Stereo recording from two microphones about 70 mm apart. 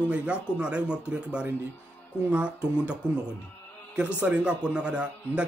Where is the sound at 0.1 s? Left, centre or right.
Centre.